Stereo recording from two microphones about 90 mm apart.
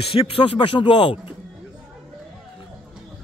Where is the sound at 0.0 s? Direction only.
90° left; by 1.2 s 65° left (ahead or behind).